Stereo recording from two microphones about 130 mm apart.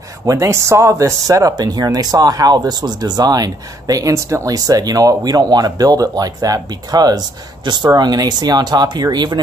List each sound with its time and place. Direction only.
0.2 s speech: 25° right (ahead or behind)